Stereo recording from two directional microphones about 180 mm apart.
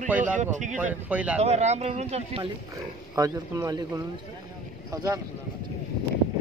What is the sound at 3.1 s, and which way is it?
Speech, 20° right (ahead or behind).